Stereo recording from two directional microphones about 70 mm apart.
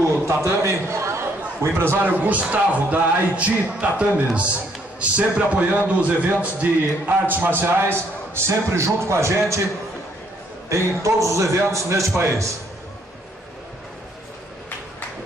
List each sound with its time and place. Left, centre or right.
0.1 s a sound: right
2.5 s a man's voice: centre; by 9.6 s right
11.2 s a man's voice: right